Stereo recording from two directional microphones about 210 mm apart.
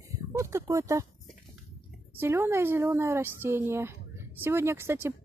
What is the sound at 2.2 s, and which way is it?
Speech, 10° right (ahead or behind).